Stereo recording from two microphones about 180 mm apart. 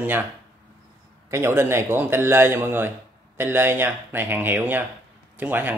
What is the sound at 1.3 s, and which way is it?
A man's voice, 15° right (ahead or behind).